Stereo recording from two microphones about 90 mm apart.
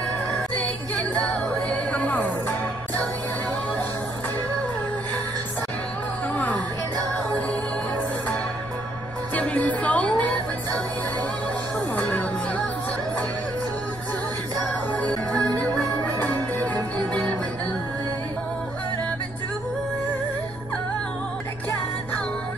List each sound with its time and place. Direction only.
1.1 s music: 15° left (ahead or behind)
6.3 s music: 20° left (ahead or behind)
9.3 s music: 15° left (ahead or behind)
11.9 s music: 15° left (ahead or behind)
14.9 s music: 15° left (ahead or behind)